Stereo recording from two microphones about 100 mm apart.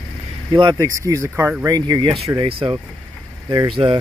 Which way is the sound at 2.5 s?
65° right (ahead or behind).